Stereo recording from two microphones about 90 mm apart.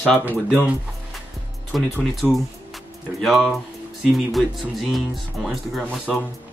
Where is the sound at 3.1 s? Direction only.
Centre (ahead or behind).